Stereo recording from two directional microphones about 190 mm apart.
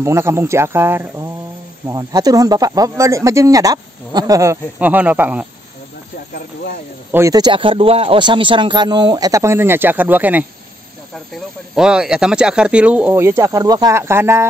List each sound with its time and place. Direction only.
0.0 s speech: 15° right (ahead or behind)
7.1 s speech: 15° right (ahead or behind)